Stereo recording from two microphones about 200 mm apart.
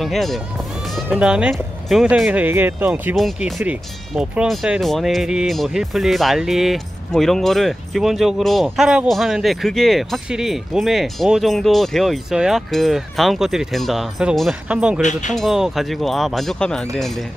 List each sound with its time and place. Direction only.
0.0 s speech: centre (ahead or behind)
15.0 s speech: 35° left (ahead or behind)
15.3 s speech: centre (ahead or behind)